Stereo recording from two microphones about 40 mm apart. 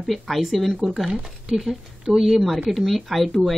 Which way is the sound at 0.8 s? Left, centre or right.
Centre.